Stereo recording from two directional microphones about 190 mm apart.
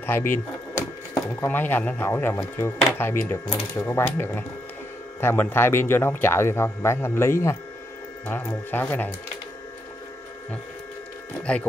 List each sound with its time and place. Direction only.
0.0 s drawer open or close: 10° left (ahead or behind)
1.4 s speech: 10° left (ahead or behind)
11.5 s speech: 5° left (ahead or behind)